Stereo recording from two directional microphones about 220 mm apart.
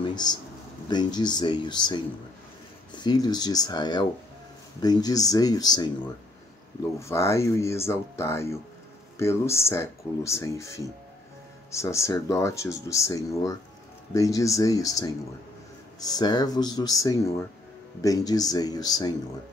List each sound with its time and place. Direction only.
0.0 s a sound: 20° left (ahead or behind)
0.8 s speech: 20° left (ahead or behind)
7.0 s speech: 15° left (ahead or behind)